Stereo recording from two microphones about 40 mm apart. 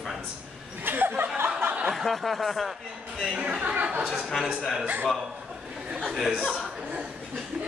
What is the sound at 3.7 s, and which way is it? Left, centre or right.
A man's voice, right.